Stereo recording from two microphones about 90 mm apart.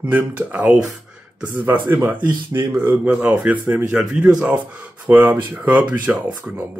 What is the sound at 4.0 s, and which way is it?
Speech, 10° right (ahead or behind).